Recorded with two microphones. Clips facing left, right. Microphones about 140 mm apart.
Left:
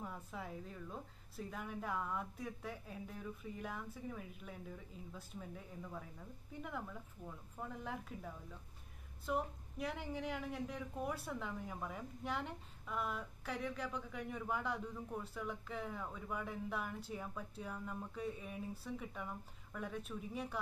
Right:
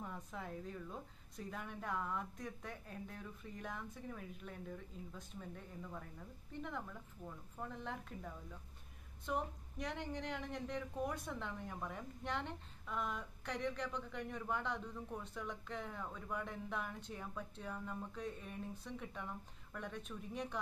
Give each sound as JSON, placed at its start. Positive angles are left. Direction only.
{"t": 0.0, "sound": "a woman's voice", "side_deg": 5}